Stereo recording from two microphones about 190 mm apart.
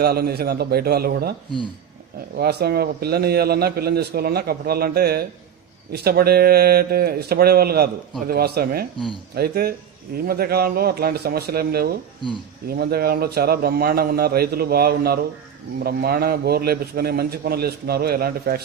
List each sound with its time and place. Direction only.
0.0 s a man's voice: 55° right (ahead or behind)
2.3 s a man's voice: 55° right (ahead or behind)
8.9 s speech: 25° left (ahead or behind)
9.3 s a man's voice: 55° right (ahead or behind)